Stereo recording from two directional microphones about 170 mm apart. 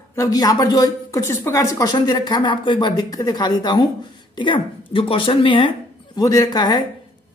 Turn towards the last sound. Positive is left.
turn(degrees=25)  # may be behind; listen again after turning